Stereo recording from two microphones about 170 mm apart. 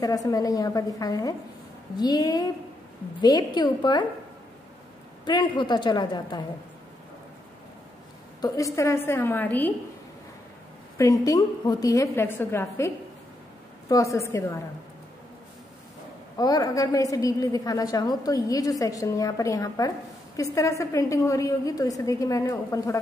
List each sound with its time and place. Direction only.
0.0 s a woman's voice: 20° left (ahead or behind)
5.2 s a woman's voice: 25° left (ahead or behind)
8.4 s a woman's voice: 20° left (ahead or behind)
11.0 s a woman's voice: 20° left (ahead or behind)
16.3 s a woman's voice: 20° left (ahead or behind)